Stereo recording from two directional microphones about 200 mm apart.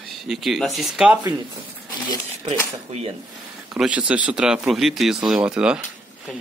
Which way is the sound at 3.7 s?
5° right (ahead or behind).